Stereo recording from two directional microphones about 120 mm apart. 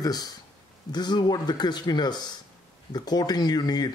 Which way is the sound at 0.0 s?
30° left (ahead or behind).